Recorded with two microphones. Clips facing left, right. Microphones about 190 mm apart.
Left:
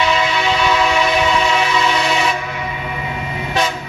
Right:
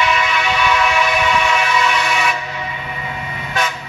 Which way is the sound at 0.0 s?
30° left (ahead or behind).